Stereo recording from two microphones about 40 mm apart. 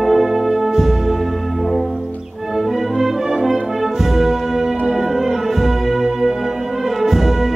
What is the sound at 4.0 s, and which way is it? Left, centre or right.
Music, centre.